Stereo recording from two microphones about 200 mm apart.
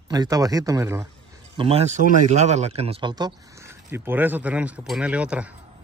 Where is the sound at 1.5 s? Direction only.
30° right (ahead or behind).